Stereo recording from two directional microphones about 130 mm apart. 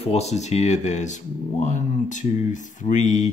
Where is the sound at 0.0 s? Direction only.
55° left (ahead or behind).